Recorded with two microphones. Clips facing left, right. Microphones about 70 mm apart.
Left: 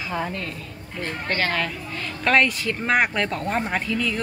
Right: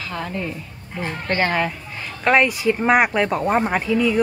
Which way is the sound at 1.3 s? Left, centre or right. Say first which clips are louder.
Right 4 dB; right.